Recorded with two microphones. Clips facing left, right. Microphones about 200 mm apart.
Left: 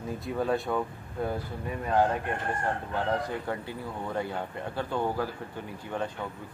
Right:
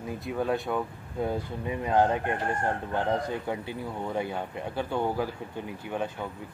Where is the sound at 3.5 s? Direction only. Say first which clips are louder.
Right 2 dB; 15° right (ahead or behind).